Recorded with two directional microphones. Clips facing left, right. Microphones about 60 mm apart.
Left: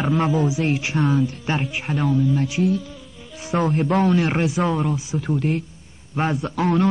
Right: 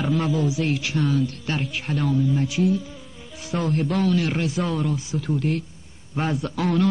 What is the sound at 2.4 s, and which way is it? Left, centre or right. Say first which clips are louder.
A man's voice: left 1 dB; left.